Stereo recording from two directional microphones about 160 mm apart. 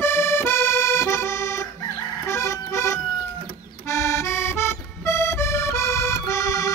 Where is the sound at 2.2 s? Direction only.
20° left (ahead or behind).